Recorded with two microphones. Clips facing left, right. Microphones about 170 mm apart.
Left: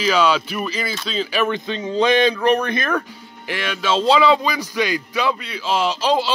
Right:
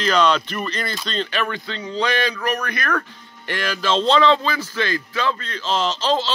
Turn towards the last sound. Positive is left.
turn(degrees=10)  # may be behind; listen again after turning